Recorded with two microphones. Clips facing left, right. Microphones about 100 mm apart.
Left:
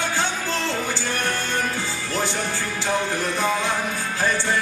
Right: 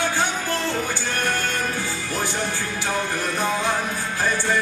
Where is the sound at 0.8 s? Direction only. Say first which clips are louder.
Even; 15° right (ahead or behind).